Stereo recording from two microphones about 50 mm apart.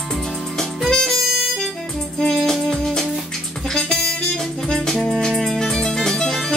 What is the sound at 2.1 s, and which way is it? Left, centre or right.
Music, centre.